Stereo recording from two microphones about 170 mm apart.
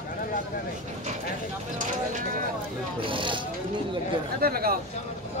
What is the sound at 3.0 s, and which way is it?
Speech, 30° right (ahead or behind).